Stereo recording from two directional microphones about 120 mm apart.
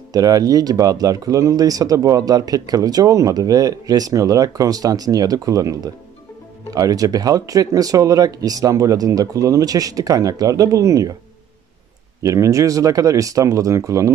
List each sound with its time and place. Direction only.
0.1 s speech: 30° right (ahead or behind)
12.2 s speech: 25° right (ahead or behind)